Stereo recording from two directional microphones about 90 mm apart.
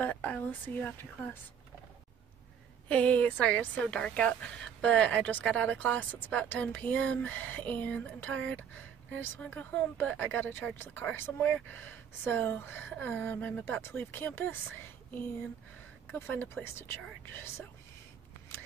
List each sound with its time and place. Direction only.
0.0 s a woman's voice: 15° left (ahead or behind)
2.9 s a woman's voice: 15° left (ahead or behind)
16.1 s speech: 25° left (ahead or behind)